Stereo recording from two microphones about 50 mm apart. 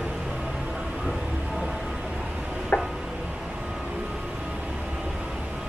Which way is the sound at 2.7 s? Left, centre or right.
Left.